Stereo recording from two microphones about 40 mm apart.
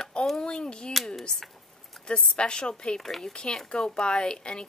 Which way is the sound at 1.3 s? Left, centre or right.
Centre.